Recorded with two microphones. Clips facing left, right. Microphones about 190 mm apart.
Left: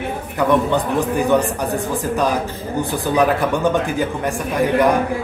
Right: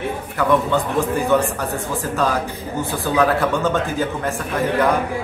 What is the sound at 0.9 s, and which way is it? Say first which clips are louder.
Speech: left 1 dB; 15° left (ahead or behind).